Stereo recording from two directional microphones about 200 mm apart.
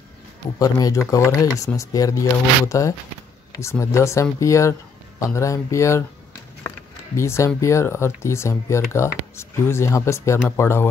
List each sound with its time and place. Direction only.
0.6 s speech: 20° left (ahead or behind)
7.2 s speech: 15° left (ahead or behind)